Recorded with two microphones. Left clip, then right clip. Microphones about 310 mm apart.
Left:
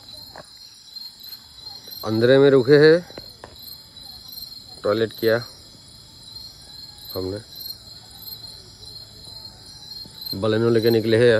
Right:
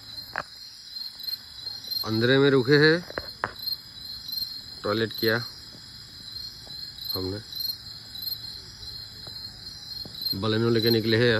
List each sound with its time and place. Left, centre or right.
2.0 s speech: centre
3.2 s cricket: left
4.8 s speech: centre
7.1 s insect: centre
10.3 s speech: centre